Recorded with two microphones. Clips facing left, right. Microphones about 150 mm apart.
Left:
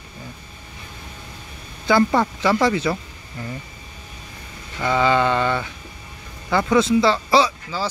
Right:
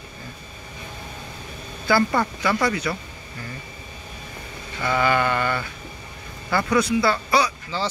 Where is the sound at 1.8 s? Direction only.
20° left (ahead or behind).